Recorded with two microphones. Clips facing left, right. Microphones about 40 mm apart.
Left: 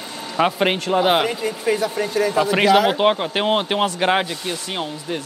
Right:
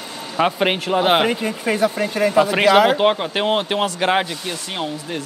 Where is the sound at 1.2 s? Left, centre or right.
Right.